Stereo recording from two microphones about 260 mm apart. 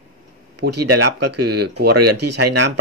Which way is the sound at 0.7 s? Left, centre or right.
Right.